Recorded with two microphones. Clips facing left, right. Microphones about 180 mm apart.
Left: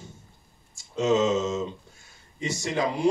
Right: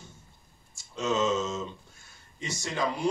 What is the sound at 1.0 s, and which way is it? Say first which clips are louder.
Speech: left 5 dB; 20° left (ahead or behind).